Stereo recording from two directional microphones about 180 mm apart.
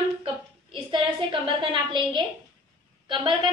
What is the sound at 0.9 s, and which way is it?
A woman's voice, 25° right (ahead or behind).